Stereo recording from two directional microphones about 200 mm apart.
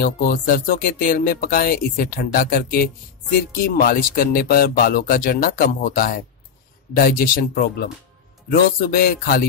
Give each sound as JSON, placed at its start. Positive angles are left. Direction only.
{"t": 0.0, "sound": "speech", "side_deg": 50}